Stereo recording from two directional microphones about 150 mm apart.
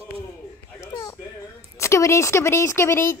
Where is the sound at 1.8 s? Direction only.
20° left (ahead or behind).